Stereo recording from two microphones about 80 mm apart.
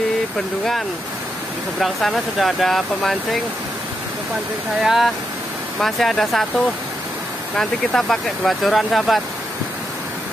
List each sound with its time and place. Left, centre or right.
1.8 s speech: centre
4.8 s speech: centre
7.5 s speech: centre